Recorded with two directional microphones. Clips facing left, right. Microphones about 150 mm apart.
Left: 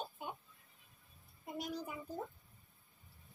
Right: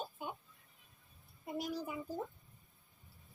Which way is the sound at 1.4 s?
5° right (ahead or behind).